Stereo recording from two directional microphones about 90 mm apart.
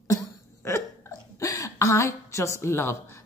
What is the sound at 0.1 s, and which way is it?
Hiccup, 30° left (ahead or behind).